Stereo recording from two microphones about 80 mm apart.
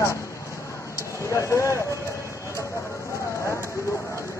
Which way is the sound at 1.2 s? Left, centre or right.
Left.